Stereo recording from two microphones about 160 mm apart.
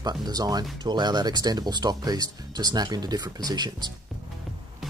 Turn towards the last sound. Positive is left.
turn(degrees=-25)  # may be behind; listen again after turning